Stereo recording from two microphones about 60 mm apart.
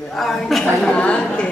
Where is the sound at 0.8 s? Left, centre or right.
Centre.